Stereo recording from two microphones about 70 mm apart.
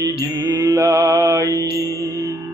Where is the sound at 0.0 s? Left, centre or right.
Right.